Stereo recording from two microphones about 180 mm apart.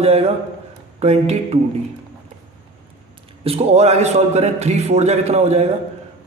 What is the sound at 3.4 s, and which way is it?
Speech, 35° right (ahead or behind).